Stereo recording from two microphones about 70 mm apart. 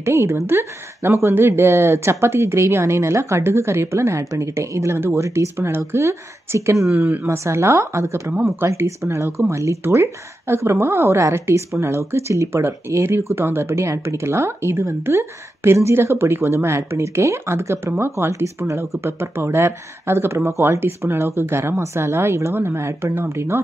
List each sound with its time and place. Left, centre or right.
0.0 s a woman's voice: right